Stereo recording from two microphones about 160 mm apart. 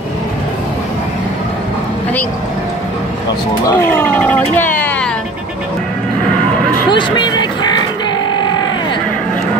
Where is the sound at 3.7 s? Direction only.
15° left (ahead or behind).